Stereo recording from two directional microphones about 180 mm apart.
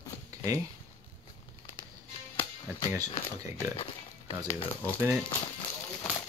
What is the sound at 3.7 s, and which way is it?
Pig, 30° left (ahead or behind).